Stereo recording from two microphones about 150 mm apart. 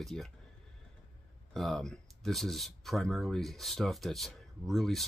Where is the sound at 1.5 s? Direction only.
Centre (ahead or behind).